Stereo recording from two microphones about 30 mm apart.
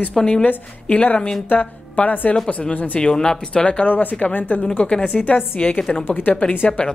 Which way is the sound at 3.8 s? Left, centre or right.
Left.